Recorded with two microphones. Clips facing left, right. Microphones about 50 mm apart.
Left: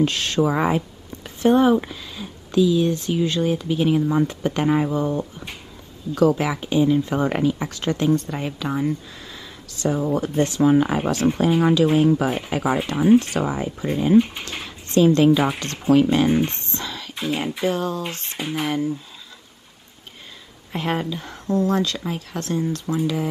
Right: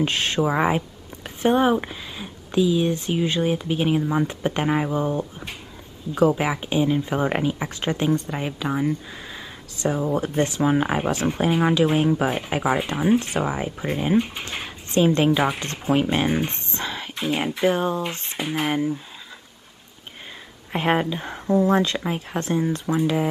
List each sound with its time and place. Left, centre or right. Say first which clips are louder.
0.0 s speech: left 2 dB; right
9.3 s a sound: right 2 dB; right
10.1 s speech: left 2 dB; right; by 13.2 s centre
13.2 s speech: left 1 dB; right
14.1 s speech: left 6 dB; centre
14.5 s speech: left 2 dB; centre
16.7 s speech: right 2 dB; right
17.2 s speech: right 1 dB; centre
17.7 s speech: right 1 dB; right
20.7 s speech: right 3 dB; right